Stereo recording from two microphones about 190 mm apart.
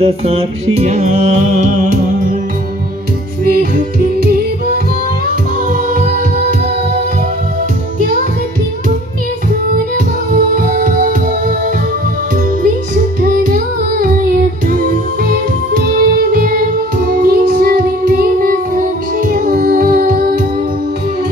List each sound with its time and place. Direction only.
0.0 s music: 30° right (ahead or behind)
5.7 s music: 40° right (ahead or behind)
10.3 s music: 45° right (ahead or behind)
12.6 s music: 45° right (ahead or behind)